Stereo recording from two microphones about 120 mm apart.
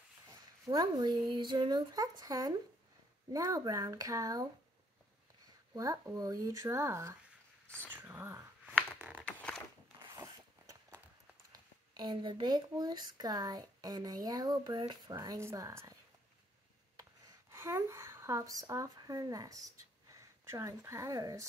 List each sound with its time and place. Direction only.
0.3 s a sound: 30° right (ahead or behind)
1.3 s speech: 40° right (ahead or behind)
5.8 s speech: 30° right (ahead or behind)
7.6 s speech: 10° left (ahead or behind)
8.1 s speech: 20° right (ahead or behind)
9.2 s a sound: 10° left (ahead or behind)
11.5 s speech: 40° right (ahead or behind)
17.5 s speech: 25° right (ahead or behind)